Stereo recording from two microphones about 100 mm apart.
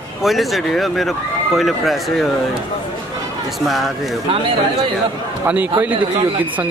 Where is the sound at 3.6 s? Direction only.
Centre (ahead or behind).